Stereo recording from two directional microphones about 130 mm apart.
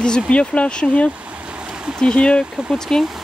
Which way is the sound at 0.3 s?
10° left (ahead or behind).